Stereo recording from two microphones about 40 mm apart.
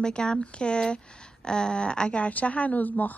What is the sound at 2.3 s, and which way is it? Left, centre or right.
Speech, left.